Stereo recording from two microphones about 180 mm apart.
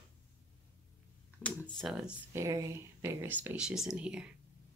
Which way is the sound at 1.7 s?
Centre (ahead or behind).